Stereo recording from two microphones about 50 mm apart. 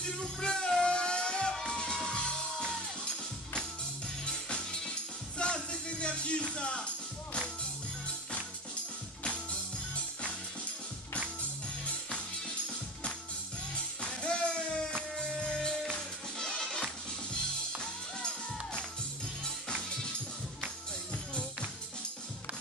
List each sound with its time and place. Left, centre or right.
0.0 s music: centre
4.3 s music: centre
9.2 s music: left
13.7 s music: left